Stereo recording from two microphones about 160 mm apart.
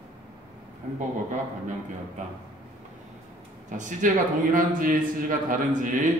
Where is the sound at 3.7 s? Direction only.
55° right (ahead or behind).